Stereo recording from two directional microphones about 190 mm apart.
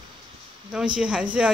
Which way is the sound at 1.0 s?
5° right (ahead or behind).